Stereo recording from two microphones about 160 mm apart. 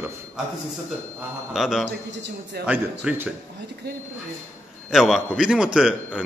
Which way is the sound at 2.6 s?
10° right (ahead or behind).